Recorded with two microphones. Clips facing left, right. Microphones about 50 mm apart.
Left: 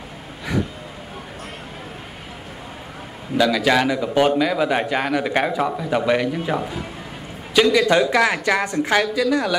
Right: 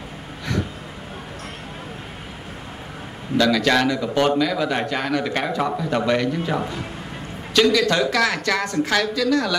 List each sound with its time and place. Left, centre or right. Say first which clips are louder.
3.3 s a man's voice: left 1 dB; centre